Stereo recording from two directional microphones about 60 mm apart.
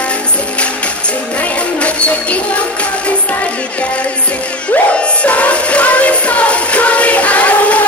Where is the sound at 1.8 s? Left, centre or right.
Left.